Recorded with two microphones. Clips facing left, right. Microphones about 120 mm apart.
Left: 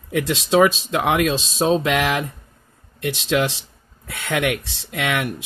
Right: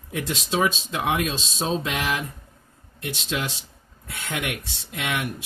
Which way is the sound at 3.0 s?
90° left.